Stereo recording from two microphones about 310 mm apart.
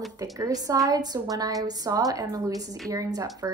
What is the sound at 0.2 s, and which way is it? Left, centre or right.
A woman's voice, centre.